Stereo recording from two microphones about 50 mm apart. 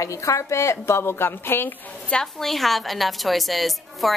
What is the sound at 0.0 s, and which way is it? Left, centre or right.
A woman's voice, left.